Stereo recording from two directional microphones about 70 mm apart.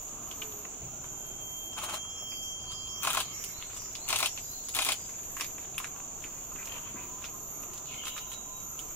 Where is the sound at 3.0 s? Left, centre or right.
Left.